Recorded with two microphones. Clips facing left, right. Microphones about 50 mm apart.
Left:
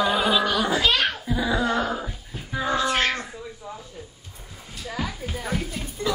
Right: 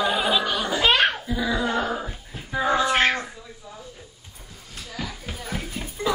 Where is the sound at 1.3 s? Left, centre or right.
Centre.